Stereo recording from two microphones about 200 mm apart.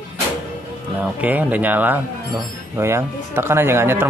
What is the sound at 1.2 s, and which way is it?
Speech, 10° right (ahead or behind).